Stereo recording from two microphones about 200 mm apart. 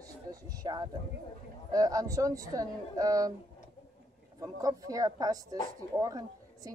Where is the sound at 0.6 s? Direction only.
20° right (ahead or behind).